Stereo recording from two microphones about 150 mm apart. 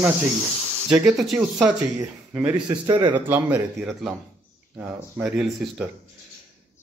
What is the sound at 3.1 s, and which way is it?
Speech, 10° right (ahead or behind).